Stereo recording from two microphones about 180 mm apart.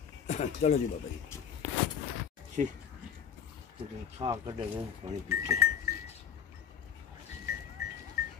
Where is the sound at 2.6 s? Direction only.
40° right (ahead or behind).